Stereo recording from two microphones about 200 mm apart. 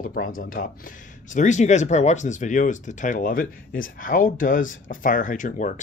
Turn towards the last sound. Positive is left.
turn(degrees=40)  # may be behind; listen again after turning